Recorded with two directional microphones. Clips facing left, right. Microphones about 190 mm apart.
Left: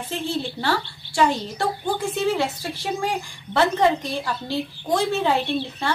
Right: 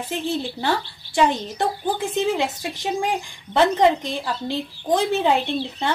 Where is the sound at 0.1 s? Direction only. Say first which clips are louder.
Right 1 dB; 15° right (ahead or behind).